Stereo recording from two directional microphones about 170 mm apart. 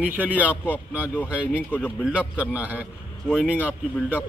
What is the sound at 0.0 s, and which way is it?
Speech, 10° right (ahead or behind).